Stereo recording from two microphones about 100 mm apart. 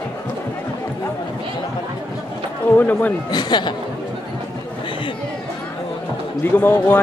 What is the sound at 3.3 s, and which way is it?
Speech, 45° left (ahead or behind).